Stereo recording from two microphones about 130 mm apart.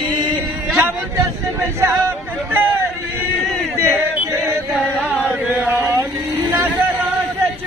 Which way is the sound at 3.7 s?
20° right (ahead or behind).